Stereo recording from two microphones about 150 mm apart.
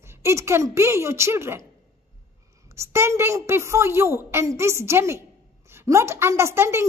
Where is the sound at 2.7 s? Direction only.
20° right (ahead or behind).